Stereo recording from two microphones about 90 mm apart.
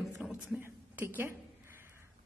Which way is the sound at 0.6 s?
20° right (ahead or behind).